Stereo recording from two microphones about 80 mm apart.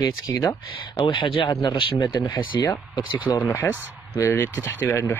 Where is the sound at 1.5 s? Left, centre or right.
Left.